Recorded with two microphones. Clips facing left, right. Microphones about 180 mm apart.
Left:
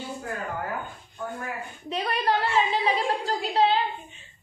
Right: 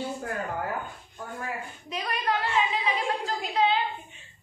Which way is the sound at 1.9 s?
30° left (ahead or behind).